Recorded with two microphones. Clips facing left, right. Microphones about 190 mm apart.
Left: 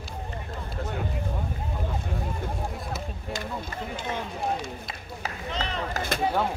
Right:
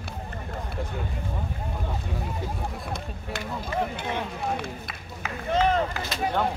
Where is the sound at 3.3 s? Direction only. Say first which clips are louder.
Right 4 dB; 60° right (ahead or behind).